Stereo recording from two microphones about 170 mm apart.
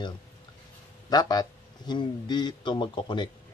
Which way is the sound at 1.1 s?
25° left (ahead or behind).